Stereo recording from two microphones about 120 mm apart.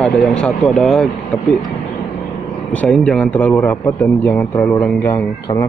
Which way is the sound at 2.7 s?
10° left (ahead or behind).